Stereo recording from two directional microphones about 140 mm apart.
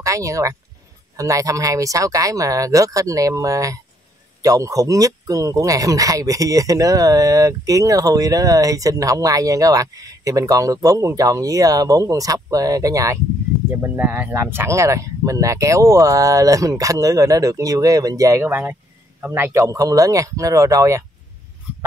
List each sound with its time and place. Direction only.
0.0 s speech: 25° right (ahead or behind)